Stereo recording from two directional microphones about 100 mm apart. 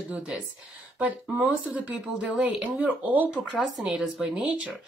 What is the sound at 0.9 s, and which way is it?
Speech, 15° right (ahead or behind).